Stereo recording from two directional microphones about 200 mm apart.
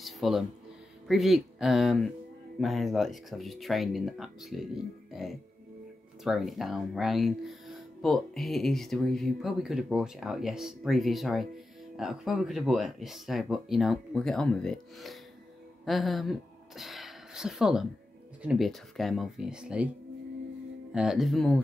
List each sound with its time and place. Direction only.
0.0 s music: centre (ahead or behind)
1.0 s speech: centre (ahead or behind)
20.9 s speech: 5° right (ahead or behind)